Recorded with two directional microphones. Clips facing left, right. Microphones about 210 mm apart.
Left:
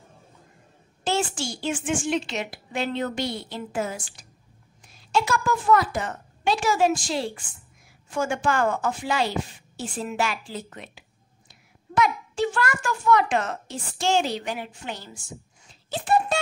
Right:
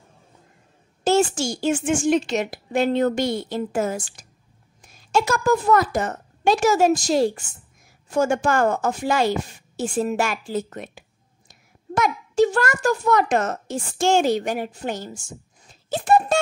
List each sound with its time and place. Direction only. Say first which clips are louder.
1.0 s a woman's voice: right 7 dB; 45° right (ahead or behind)